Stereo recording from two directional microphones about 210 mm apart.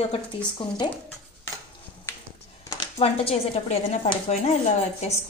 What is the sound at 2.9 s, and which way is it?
A woman's voice, 30° left (ahead or behind).